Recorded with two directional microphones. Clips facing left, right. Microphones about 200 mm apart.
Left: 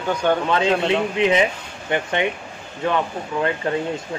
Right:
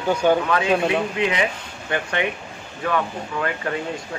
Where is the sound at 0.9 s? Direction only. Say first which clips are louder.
Left 3 dB; 20° left (ahead or behind).